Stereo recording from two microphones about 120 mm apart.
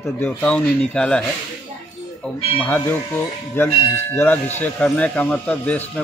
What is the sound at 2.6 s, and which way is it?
A man's voice, 15° left (ahead or behind).